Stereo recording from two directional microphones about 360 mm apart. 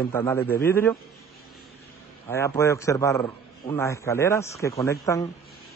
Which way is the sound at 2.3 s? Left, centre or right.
Centre.